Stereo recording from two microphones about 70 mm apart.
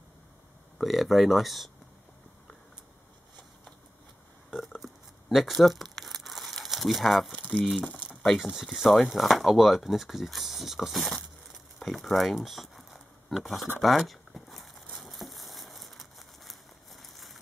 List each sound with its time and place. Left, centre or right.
0.7 s speech: centre
4.5 s crumpling: centre
7.3 s speech: left
7.8 s crumpling: left
8.7 s speech: centre
11.5 s a sound: centre